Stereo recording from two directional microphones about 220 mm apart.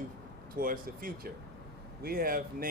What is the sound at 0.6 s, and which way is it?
A man's voice, 40° right (ahead or behind).